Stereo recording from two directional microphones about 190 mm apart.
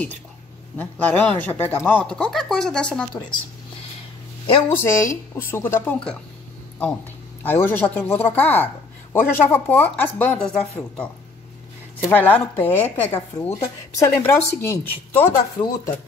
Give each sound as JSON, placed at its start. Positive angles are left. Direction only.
{"t": 0.7, "sound": "speech", "side_deg": 10}
{"t": 4.6, "sound": "speech", "side_deg": 15}
{"t": 7.4, "sound": "speech", "side_deg": 10}
{"t": 12.1, "sound": "speech", "side_deg": 10}